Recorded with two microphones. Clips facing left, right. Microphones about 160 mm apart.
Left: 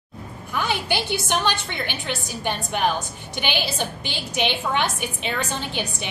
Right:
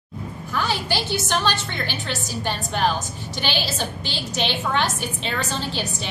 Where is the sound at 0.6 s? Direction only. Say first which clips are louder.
Even; 15° left (ahead or behind).